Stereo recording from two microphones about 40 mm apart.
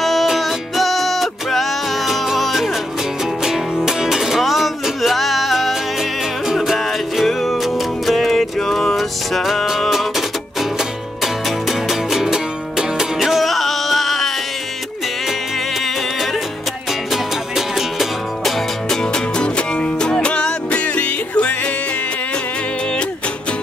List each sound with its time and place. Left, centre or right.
0.0 s music: centre
3.7 s music: centre
8.9 s music: centre
11.9 s music: centre
13.5 s music: centre
17.1 s music: centre
18.9 s music: left